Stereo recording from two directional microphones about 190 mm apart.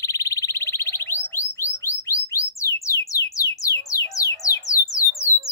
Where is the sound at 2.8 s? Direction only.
15° left (ahead or behind).